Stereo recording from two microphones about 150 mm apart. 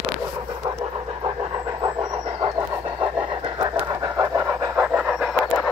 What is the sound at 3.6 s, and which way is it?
Pant, 25° right (ahead or behind).